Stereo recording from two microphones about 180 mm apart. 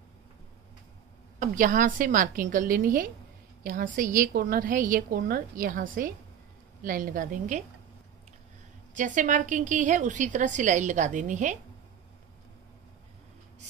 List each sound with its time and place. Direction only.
1.4 s a woman's voice: 45° right (ahead or behind)
8.9 s a woman's voice: 45° right (ahead or behind)